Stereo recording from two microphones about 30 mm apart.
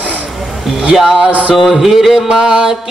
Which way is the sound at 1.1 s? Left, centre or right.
Right.